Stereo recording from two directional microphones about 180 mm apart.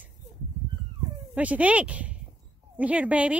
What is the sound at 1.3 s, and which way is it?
Speech, 5° right (ahead or behind).